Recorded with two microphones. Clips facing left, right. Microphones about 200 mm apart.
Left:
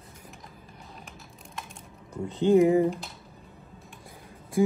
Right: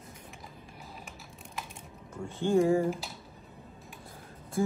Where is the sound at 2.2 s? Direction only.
20° left (ahead or behind).